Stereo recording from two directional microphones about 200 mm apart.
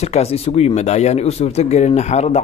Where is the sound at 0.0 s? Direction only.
30° left (ahead or behind).